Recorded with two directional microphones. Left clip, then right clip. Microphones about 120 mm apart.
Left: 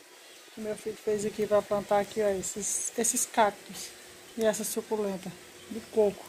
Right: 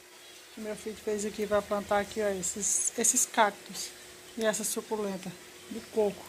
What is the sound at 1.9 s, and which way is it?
Speech, 15° left (ahead or behind).